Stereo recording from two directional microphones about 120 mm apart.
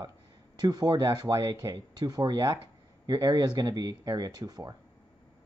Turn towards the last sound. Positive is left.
turn(degrees=-30)  # may be behind; listen again after turning